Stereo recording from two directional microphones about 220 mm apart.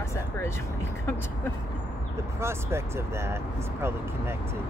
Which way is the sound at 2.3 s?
10° right (ahead or behind).